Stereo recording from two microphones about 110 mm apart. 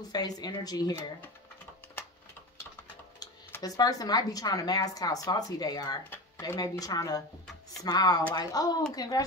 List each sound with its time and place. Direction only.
0.1 s a woman's voice: 40° left (ahead or behind)
3.6 s a woman's voice: 35° left (ahead or behind)
6.0 s a sound: 20° left (ahead or behind)
6.4 s a woman's voice: 30° left (ahead or behind)